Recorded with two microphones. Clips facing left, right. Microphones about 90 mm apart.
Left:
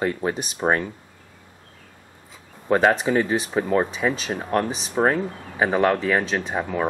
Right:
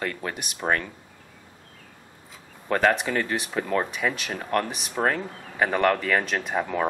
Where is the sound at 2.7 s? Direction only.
20° left (ahead or behind).